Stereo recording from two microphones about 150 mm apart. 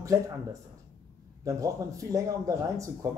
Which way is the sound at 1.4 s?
20° right (ahead or behind).